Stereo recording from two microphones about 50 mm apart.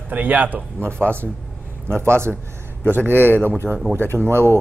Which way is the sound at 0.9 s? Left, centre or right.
Left.